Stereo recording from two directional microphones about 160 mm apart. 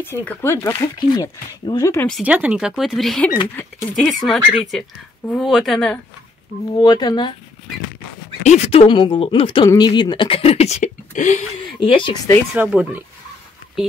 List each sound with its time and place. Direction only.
0.0 s speech: 10° left (ahead or behind)
2.2 s speech: 10° right (ahead or behind)
6.8 s speech: 25° left (ahead or behind)
8.5 s speech: 40° left (ahead or behind)
11.8 s speech: 30° left (ahead or behind)
12.5 s speech: 10° right (ahead or behind)